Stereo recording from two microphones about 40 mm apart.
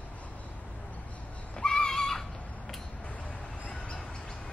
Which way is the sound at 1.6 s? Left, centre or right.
Centre.